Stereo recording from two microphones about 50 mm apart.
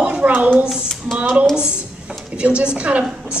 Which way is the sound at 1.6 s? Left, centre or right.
Centre.